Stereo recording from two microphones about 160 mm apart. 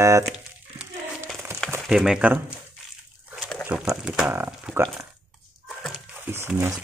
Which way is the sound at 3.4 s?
5° left (ahead or behind).